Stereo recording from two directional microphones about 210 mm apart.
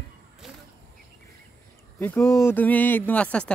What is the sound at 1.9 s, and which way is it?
Speech, 10° left (ahead or behind).